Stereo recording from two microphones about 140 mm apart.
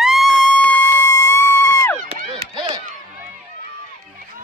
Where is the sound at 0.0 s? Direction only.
Centre (ahead or behind); by 2.0 s 20° left (ahead or behind).